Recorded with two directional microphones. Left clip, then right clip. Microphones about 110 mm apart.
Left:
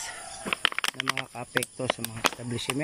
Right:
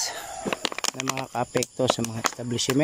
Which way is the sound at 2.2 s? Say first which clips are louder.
Right 1 dB; centre (ahead or behind).